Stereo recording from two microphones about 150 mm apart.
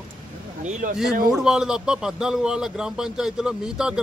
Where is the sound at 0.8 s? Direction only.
60° right (ahead or behind).